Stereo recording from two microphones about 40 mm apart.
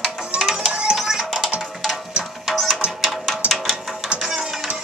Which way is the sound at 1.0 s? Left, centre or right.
Centre.